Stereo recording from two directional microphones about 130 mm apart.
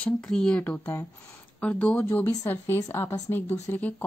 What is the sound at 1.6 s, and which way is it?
A woman's voice, 10° left (ahead or behind).